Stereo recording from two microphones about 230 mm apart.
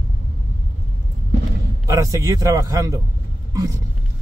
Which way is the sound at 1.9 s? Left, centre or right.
Centre.